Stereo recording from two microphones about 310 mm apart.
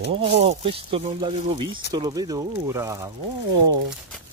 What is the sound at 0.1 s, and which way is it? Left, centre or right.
Speech, centre.